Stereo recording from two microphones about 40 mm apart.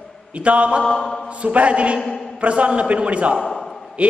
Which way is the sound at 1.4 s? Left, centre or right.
Right.